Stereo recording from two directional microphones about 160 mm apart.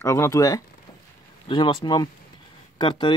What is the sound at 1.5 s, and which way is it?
Speech, 30° left (ahead or behind).